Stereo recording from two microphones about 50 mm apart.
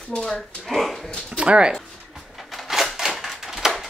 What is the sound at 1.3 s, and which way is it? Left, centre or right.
Speech, right.